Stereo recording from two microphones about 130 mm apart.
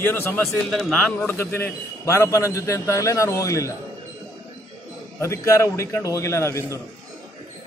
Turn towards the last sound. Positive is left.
turn(degrees=20)  # may be behind; listen again after turning